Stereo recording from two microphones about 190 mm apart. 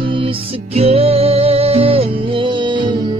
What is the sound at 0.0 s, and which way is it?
Music, 25° right (ahead or behind).